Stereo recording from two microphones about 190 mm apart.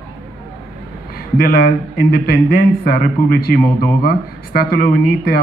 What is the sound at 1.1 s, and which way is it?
Speech, 55° left (ahead or behind).